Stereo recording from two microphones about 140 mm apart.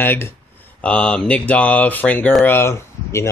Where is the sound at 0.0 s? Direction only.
15° left (ahead or behind).